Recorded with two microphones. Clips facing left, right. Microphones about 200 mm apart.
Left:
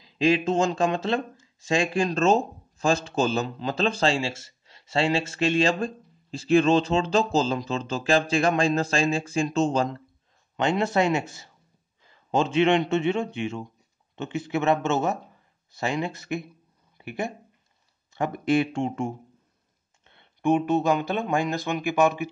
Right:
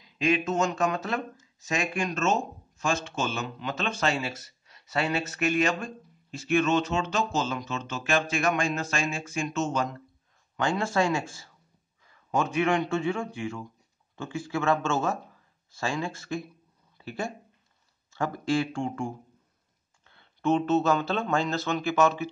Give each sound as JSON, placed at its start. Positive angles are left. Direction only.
{"t": 0.0, "sound": "a man's voice", "side_deg": 30}
{"t": 10.5, "sound": "a man's voice", "side_deg": 20}
{"t": 16.9, "sound": "a sound", "side_deg": 20}
{"t": 18.1, "sound": "speech", "side_deg": 20}